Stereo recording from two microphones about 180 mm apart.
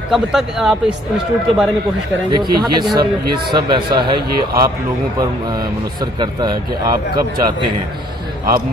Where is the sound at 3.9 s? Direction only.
25° right (ahead or behind).